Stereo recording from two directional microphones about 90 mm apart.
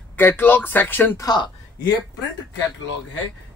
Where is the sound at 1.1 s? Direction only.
40° left (ahead or behind).